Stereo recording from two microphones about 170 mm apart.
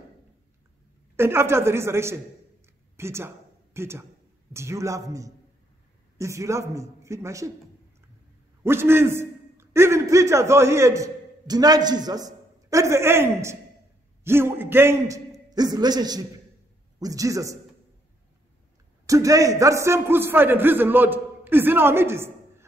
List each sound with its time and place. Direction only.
1.1 s a man's voice: 15° right (ahead or behind)
3.0 s a sound: 15° right (ahead or behind)
4.5 s a man's voice: 15° right (ahead or behind)
8.6 s a man's voice: 15° right (ahead or behind)
19.0 s a man's voice: 20° right (ahead or behind)